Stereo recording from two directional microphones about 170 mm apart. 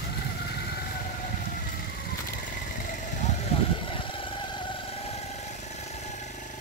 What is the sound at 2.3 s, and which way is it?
Vehicle, 55° left (ahead or behind).